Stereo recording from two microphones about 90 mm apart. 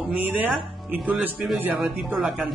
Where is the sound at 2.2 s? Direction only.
5° right (ahead or behind).